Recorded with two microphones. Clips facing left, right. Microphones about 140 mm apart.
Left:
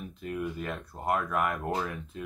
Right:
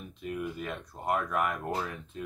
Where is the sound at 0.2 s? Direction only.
5° right (ahead or behind).